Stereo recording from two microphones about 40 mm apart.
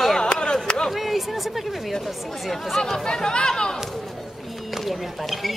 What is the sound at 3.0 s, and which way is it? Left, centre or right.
Speech, centre.